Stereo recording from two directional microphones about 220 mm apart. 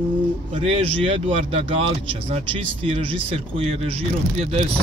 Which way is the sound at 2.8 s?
25° right (ahead or behind).